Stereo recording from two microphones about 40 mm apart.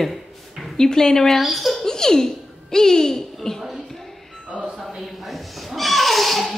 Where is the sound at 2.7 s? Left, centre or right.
Centre.